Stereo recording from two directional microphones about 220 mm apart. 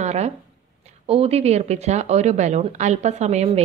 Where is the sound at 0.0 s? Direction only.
30° right (ahead or behind).